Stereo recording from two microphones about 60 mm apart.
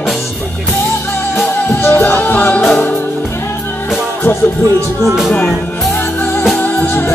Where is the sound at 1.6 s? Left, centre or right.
Left.